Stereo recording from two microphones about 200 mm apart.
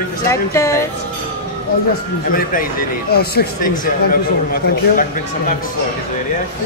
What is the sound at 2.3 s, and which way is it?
A man's voice, 45° left (ahead or behind).